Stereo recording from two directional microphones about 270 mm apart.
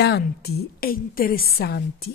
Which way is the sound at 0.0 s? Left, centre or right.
Left.